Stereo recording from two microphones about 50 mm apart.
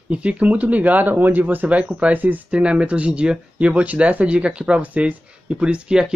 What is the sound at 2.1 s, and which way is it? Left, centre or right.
Speech, right.